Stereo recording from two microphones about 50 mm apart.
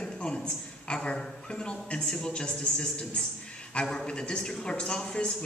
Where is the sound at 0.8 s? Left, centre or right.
Centre.